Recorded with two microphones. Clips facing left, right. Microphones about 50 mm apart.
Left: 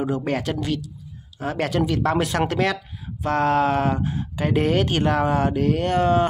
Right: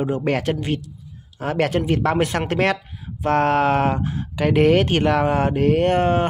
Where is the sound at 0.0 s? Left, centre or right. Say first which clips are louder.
Right 3 dB; right.